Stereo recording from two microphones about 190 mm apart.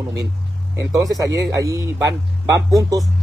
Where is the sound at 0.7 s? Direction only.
15° right (ahead or behind).